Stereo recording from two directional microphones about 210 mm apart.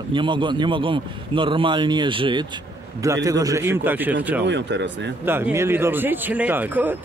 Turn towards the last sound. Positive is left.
turn(degrees=-10)  # may be behind; listen again after turning